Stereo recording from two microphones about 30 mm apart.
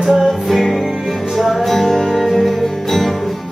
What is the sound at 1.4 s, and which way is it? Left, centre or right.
Music, centre.